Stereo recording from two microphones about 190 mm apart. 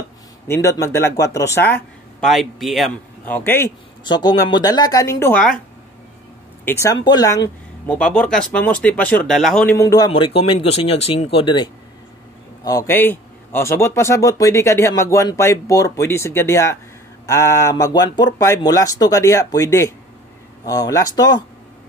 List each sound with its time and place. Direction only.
0.5 s a man's voice: 15° left (ahead or behind)
2.1 s a man's voice: centre (ahead or behind)
4.0 s speech: 25° left (ahead or behind); by 5.6 s 5° left (ahead or behind)
6.6 s speech: 15° left (ahead or behind)
8.3 s a man's voice: 5° left (ahead or behind)
9.8 s a man's voice: 20° left (ahead or behind)